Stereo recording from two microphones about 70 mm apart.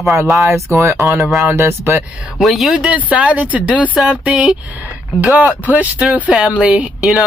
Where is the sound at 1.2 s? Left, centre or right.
Centre.